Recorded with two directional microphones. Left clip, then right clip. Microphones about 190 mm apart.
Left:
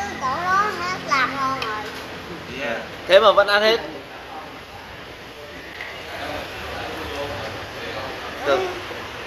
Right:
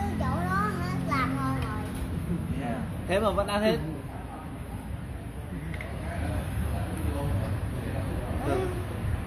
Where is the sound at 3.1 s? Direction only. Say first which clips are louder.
Left 13 dB; 35° left (ahead or behind).